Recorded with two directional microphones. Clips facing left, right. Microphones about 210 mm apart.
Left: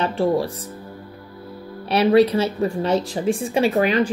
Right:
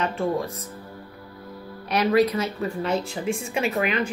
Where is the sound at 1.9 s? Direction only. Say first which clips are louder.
Left 5 dB; 30° left (ahead or behind).